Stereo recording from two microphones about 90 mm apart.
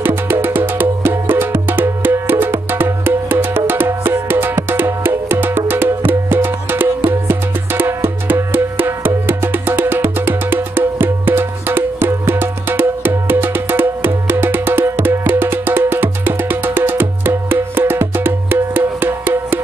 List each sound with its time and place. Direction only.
0.0 s music: 25° right (ahead or behind)